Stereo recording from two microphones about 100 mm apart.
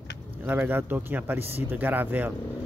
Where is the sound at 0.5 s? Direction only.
15° right (ahead or behind).